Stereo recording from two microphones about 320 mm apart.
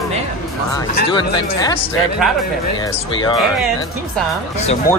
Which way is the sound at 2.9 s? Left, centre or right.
Centre.